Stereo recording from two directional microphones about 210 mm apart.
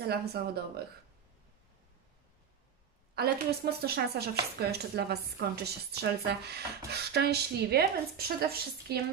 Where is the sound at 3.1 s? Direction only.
50° right (ahead or behind).